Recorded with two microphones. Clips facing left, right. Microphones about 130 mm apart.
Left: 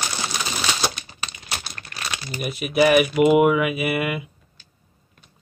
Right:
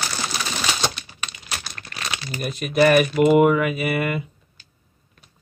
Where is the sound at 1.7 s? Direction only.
5° left (ahead or behind).